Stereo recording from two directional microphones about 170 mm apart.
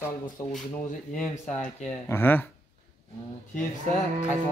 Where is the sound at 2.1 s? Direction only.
10° left (ahead or behind).